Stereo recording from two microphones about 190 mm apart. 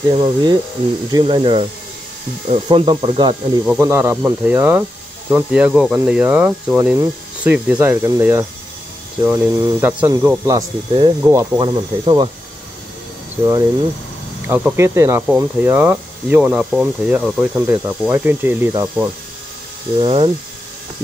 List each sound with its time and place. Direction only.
0.1 s speech: 25° right (ahead or behind)
3.6 s speech: 10° right (ahead or behind)
10.9 s speech: 30° right (ahead or behind)
11.2 s speech: 15° right (ahead or behind)
14.5 s speech: 10° right (ahead or behind)
20.0 s speech: 30° right (ahead or behind)